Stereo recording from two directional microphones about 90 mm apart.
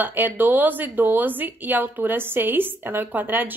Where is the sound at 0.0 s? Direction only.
20° right (ahead or behind).